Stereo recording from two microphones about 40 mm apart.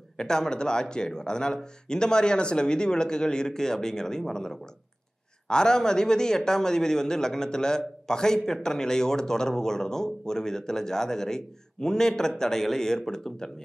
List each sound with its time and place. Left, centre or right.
0.2 s speech: centre